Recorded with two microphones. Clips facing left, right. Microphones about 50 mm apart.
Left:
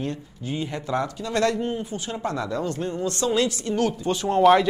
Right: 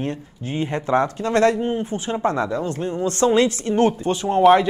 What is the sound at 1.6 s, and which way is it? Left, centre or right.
Speech, right.